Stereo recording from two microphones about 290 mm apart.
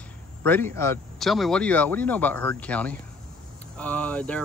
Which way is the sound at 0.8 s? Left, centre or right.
Centre.